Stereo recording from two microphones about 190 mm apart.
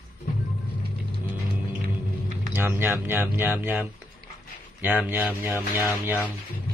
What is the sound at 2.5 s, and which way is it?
Speech, 10° right (ahead or behind).